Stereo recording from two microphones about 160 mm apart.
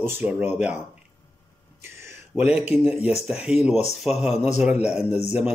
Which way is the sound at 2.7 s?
5° right (ahead or behind).